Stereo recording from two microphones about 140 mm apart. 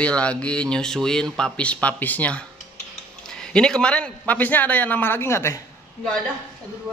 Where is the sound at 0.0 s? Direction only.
10° left (ahead or behind).